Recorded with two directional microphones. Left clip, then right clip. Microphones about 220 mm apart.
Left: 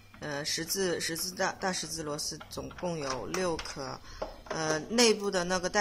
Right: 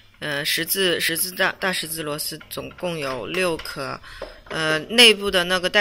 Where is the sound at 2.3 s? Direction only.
Centre (ahead or behind).